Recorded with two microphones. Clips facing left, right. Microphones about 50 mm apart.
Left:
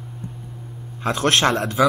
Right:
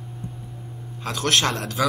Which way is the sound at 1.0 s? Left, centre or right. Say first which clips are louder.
Left 4 dB; left.